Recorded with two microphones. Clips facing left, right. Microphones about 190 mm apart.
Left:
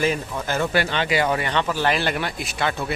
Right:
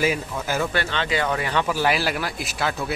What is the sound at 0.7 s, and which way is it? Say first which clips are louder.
Speech: left 3 dB; 10° left (ahead or behind).